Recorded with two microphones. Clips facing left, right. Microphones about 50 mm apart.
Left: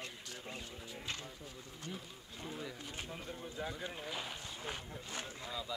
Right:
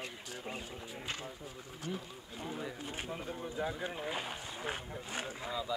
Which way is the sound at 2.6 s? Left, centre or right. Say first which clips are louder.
Right 3 dB; right.